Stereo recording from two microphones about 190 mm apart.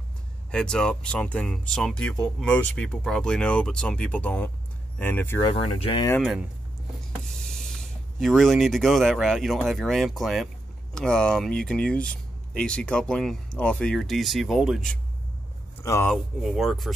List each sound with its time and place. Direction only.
0.5 s speech: 5° left (ahead or behind)
5.5 s speech: 30° left (ahead or behind)
7.1 s speech: 5° left (ahead or behind)
15.8 s speech: 15° left (ahead or behind)
16.4 s speech: centre (ahead or behind)